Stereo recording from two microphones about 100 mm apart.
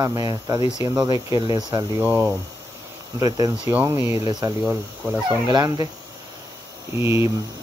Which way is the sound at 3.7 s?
20° right (ahead or behind).